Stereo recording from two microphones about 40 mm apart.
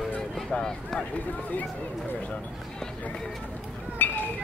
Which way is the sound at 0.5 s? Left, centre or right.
Centre.